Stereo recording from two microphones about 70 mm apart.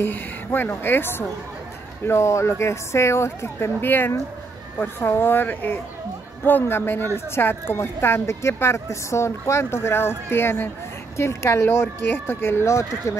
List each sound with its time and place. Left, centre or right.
0.0 s speech: left
2.0 s speech: left